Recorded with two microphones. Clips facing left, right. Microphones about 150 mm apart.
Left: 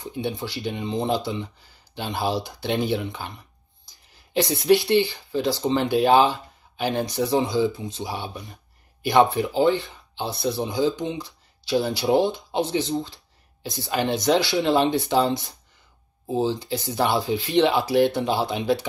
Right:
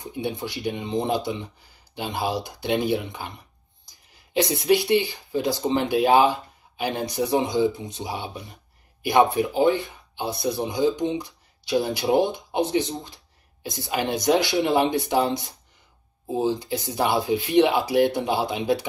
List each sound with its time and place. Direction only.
0.0 s speech: 20° right (ahead or behind)